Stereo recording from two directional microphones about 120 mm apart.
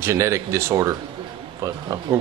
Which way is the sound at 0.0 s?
25° right (ahead or behind).